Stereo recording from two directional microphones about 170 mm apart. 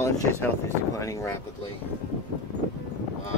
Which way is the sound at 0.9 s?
20° left (ahead or behind).